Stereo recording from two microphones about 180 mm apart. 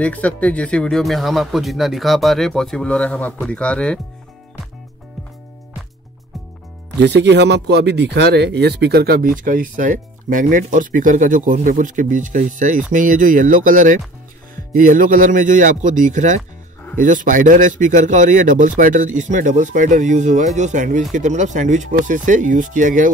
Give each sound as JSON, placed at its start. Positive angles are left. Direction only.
{"t": 0.0, "sound": "speech", "side_deg": 5}
{"t": 7.0, "sound": "speech", "side_deg": -70}